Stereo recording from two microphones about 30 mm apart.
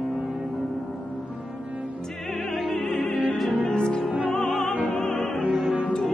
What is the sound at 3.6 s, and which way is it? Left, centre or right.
Music, left.